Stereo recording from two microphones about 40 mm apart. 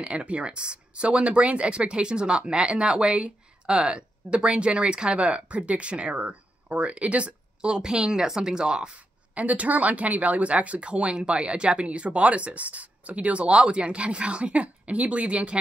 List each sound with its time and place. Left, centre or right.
0.0 s speech: right
9.3 s speech: right